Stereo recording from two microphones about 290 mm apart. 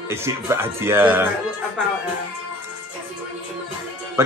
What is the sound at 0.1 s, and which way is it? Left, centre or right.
A man's voice, centre.